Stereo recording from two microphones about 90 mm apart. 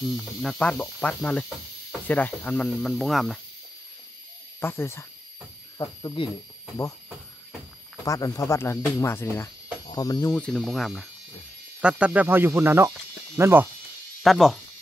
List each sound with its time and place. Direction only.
0.0 s speech: centre (ahead or behind)
0.6 s speech: 20° left (ahead or behind)
2.9 s speech: centre (ahead or behind)
4.6 s speech: 25° left (ahead or behind)
6.2 s speech: 65° left (ahead or behind)
8.0 s speech: 40° left (ahead or behind)
9.9 s speech: 45° left (ahead or behind)
10.3 s speech: 10° left (ahead or behind)
10.6 s speech: centre (ahead or behind); by 13.7 s 25° right (ahead or behind)
14.2 s speech: centre (ahead or behind)